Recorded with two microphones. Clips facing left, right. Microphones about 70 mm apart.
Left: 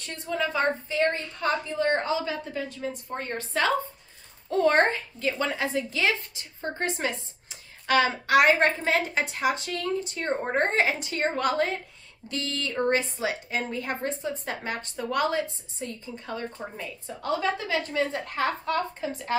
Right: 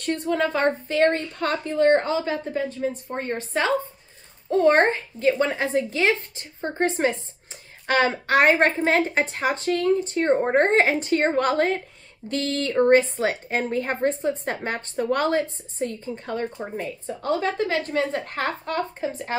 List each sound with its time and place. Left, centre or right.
0.0 s a woman's voice: right
16.8 s a woman's voice: right
17.3 s a woman's voice: right
18.7 s a woman's voice: right